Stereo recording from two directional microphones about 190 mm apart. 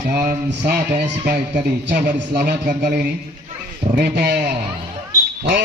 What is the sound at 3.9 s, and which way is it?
Speech, 60° right (ahead or behind).